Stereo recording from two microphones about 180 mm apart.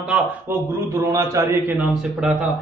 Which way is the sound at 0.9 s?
15° right (ahead or behind).